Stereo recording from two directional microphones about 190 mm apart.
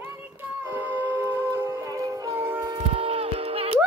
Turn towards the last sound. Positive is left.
turn(degrees=-30)  # may be behind; listen again after turning